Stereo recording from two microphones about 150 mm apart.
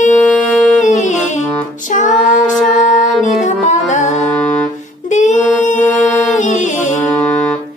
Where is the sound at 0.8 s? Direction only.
55° left (ahead or behind).